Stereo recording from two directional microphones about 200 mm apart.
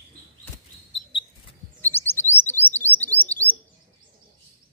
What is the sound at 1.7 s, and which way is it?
Chirp, 10° left (ahead or behind).